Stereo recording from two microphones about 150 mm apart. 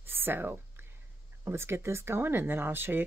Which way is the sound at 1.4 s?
15° right (ahead or behind).